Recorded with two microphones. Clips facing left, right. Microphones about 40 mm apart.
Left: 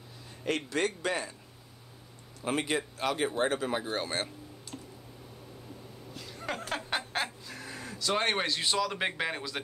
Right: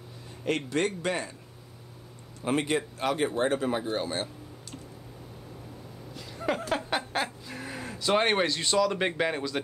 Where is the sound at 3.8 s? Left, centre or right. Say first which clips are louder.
Right 2 dB; left.